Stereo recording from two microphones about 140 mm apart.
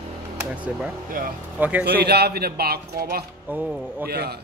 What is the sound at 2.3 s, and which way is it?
Speech, 90° right.